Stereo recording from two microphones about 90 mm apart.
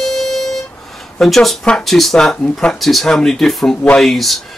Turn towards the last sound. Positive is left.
turn(degrees=0)  # may be behind; listen again after turning